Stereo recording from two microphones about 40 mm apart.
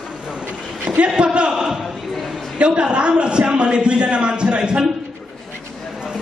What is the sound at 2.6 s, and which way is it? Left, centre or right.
A man's voice, right.